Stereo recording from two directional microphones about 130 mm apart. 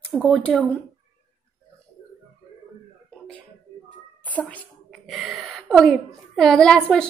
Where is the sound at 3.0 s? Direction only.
10° left (ahead or behind).